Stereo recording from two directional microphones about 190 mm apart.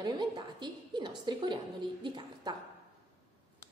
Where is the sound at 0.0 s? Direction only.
25° right (ahead or behind).